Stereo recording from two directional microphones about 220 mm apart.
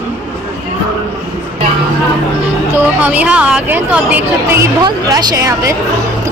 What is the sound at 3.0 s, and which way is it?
A woman's voice, 5° right (ahead or behind).